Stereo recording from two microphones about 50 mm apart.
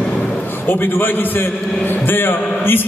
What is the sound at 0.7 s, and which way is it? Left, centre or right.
A man's voice, left.